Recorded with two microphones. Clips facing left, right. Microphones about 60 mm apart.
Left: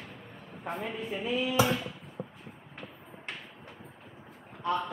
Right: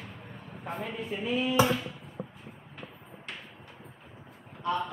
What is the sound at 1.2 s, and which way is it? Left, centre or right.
Dishes, right.